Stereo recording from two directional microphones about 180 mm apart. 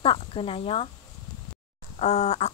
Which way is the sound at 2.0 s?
35° left (ahead or behind).